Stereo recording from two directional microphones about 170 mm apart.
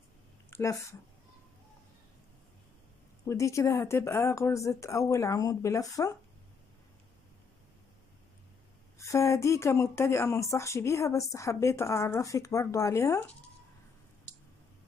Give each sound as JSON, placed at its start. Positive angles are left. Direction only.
{"t": 0.5, "sound": "a sound", "side_deg": 15}
{"t": 3.3, "sound": "speech", "side_deg": 15}
{"t": 8.9, "sound": "speech", "side_deg": 20}